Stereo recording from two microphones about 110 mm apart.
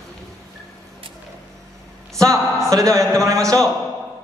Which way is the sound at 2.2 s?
30° right (ahead or behind).